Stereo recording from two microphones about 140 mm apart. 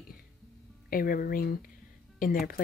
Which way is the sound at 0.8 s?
90° left.